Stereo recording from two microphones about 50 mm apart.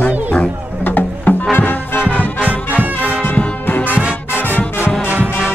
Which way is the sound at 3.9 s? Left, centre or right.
Right.